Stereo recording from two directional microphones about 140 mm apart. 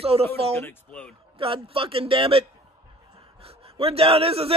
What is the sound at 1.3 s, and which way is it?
A man's voice, 40° right (ahead or behind).